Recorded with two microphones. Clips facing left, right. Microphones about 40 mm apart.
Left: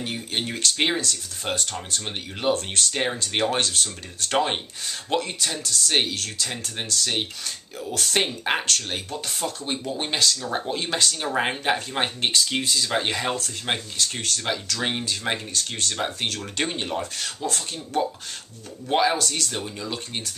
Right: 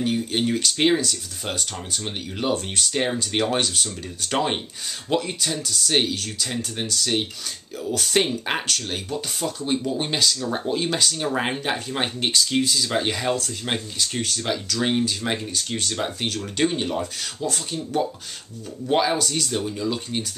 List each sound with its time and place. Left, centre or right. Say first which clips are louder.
0.0 s speech: right 6 dB; centre
14.4 s speech: right 2 dB; centre
18.9 s speech: even; centre
19.2 s speech: right 2 dB; centre
19.5 s speech: right 5 dB; centre